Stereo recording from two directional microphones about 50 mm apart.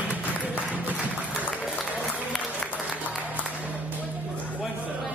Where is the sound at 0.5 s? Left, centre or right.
Right.